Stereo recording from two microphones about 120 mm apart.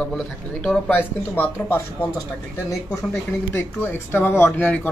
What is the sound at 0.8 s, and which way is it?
Speech, 15° left (ahead or behind).